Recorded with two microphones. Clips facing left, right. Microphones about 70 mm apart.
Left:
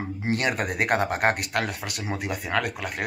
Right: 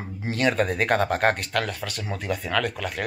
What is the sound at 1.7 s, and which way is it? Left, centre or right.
Speech, centre.